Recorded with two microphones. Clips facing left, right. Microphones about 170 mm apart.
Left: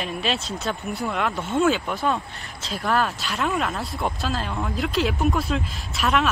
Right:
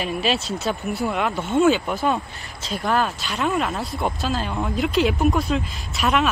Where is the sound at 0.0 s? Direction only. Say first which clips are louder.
Right 3 dB; 5° right (ahead or behind).